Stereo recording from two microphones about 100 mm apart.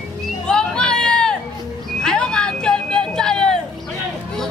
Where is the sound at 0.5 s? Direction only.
10° left (ahead or behind).